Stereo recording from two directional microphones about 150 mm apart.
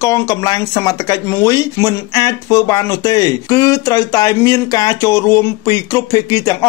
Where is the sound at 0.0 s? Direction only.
20° left (ahead or behind).